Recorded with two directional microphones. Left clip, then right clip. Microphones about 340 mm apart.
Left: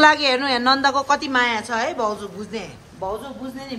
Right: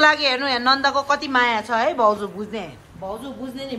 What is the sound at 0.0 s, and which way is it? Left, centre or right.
A woman's voice, centre.